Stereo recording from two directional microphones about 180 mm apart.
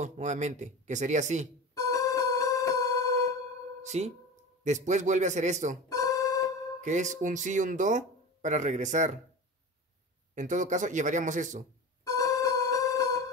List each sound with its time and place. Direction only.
0.0 s speech: 40° right (ahead or behind)
1.8 s music: 20° left (ahead or behind)
3.8 s speech: 40° right (ahead or behind)
5.9 s keyboard: 15° left (ahead or behind)
6.8 s speech: 40° right (ahead or behind)
10.3 s speech: 45° right (ahead or behind)
12.0 s music: 20° left (ahead or behind)